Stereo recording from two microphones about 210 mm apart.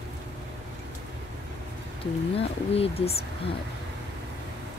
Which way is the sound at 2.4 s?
30° left (ahead or behind).